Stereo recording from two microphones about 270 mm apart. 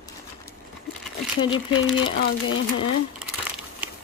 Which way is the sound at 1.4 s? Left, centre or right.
Centre.